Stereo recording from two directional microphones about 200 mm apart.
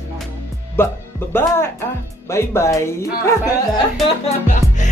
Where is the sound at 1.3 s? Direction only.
10° left (ahead or behind).